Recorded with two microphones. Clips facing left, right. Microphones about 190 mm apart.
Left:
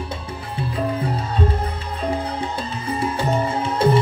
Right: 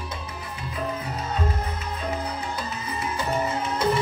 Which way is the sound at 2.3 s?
30° left (ahead or behind).